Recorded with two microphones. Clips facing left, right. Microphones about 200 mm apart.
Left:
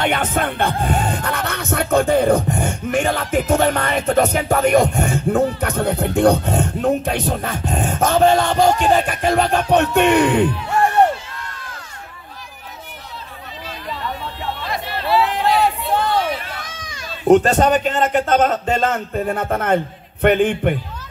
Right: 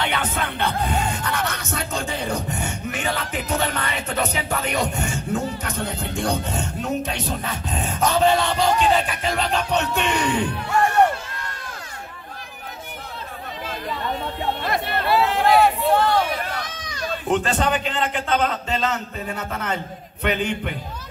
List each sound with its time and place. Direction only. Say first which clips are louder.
0.0 s music: left 6 dB; 45° left (ahead or behind)
14.6 s chatter: right 1 dB; 55° right (ahead or behind)
17.3 s music: left 9 dB; 40° left (ahead or behind)